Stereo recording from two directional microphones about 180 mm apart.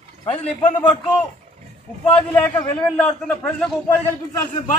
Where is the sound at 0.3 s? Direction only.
30° left (ahead or behind).